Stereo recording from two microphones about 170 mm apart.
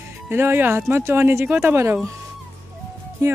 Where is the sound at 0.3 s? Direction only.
15° right (ahead or behind).